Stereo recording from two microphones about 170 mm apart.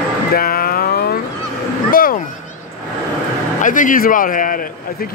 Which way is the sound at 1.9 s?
55° left (ahead or behind).